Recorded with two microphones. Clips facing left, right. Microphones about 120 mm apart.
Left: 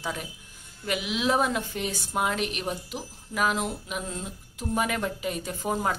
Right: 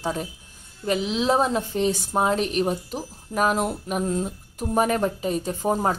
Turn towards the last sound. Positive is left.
turn(degrees=-35)  # may be behind; listen again after turning